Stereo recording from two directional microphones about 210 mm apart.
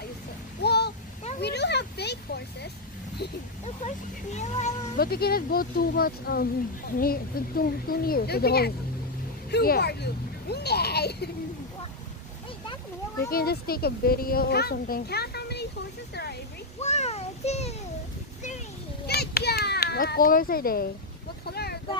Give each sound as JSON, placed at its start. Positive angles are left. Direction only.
{"t": 0.7, "sound": "a sound", "side_deg": 50}
{"t": 3.8, "sound": "speech", "side_deg": 35}
{"t": 13.3, "sound": "speech", "side_deg": 45}
{"t": 16.8, "sound": "a sound", "side_deg": 30}
{"t": 19.0, "sound": "children playing", "side_deg": 50}
{"t": 21.5, "sound": "vehicle", "side_deg": 50}